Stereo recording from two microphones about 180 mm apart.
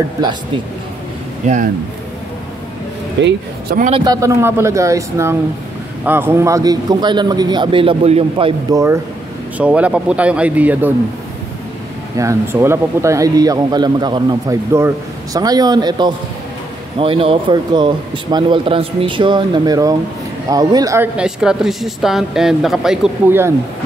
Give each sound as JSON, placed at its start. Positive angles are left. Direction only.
{"t": 3.2, "sound": "speech", "side_deg": -90}
{"t": 3.9, "sound": "speech", "side_deg": -20}
{"t": 8.7, "sound": "speech", "side_deg": -15}
{"t": 12.2, "sound": "speech", "side_deg": -15}
{"t": 21.2, "sound": "speech", "side_deg": -5}